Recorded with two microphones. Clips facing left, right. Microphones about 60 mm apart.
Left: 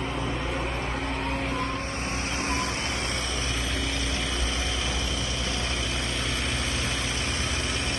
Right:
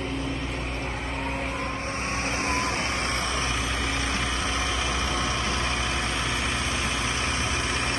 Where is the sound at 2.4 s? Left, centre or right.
Right.